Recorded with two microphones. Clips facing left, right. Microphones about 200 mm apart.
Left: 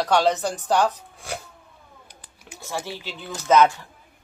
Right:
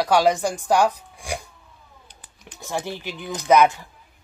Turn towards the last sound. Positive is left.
turn(degrees=-15)  # may be behind; listen again after turning